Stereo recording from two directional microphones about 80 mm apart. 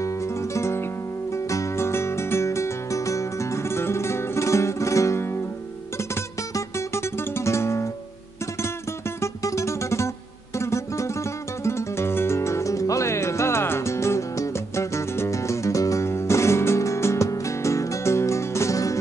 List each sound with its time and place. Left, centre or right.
0.6 s music: left
6.5 s music: left
9.2 s music: left